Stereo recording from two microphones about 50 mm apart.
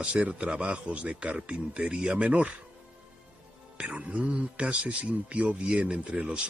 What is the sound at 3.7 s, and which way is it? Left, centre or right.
A man's voice, right.